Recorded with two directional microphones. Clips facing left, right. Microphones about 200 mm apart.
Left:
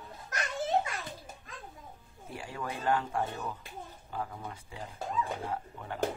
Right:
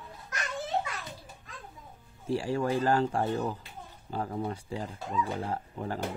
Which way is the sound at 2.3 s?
30° right (ahead or behind).